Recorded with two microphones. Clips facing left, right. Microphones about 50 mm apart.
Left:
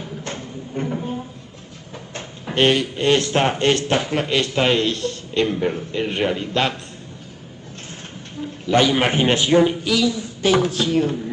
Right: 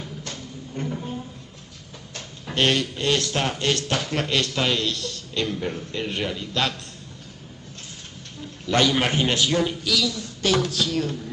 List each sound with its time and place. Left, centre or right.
0.2 s a sound: left
3.1 s a man's voice: left
8.4 s a man's voice: centre